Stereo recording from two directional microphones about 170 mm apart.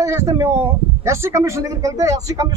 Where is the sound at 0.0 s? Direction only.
20° right (ahead or behind).